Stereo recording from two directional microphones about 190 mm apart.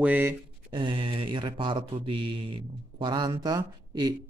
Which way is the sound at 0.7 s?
25° right (ahead or behind).